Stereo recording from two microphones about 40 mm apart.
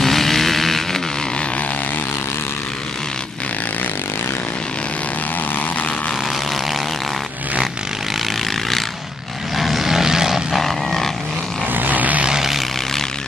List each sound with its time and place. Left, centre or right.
0.0 s vehicle: centre
9.6 s vehicle: centre
10.5 s vehicle: centre
11.7 s vehicle: right
12.3 s vehicle: centre